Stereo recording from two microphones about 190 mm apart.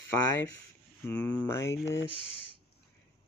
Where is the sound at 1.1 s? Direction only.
10° left (ahead or behind).